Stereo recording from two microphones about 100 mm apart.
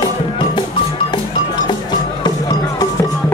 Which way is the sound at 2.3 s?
40° left (ahead or behind).